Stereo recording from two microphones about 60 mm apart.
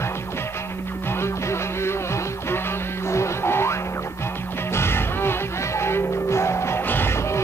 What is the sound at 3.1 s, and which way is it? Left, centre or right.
Music, left.